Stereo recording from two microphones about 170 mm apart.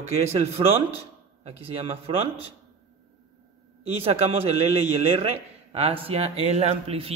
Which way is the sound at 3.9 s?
35° right (ahead or behind).